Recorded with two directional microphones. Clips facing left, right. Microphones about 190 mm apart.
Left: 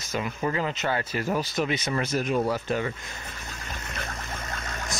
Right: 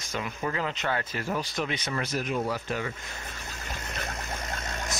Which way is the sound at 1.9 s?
25° left (ahead or behind).